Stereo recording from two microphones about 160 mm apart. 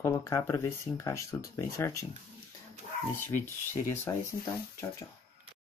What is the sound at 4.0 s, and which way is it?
Speech, 15° left (ahead or behind).